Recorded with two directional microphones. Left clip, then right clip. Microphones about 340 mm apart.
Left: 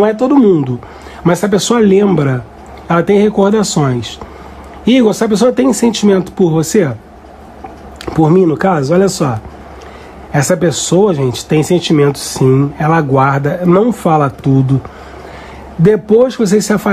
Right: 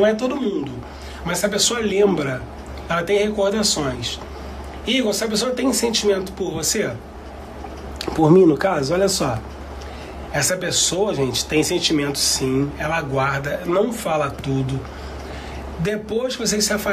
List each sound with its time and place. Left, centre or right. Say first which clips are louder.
0.0 s speech: left 9 dB; centre
8.0 s speech: left 3 dB; centre
10.3 s speech: left 8 dB; centre
15.8 s speech: left 15 dB; centre